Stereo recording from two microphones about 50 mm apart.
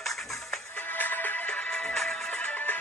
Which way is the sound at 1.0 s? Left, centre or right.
Left.